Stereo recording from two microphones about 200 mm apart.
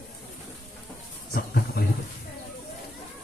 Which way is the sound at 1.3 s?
50° left (ahead or behind).